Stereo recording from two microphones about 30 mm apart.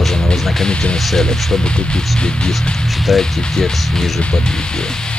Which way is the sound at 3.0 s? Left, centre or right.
Centre.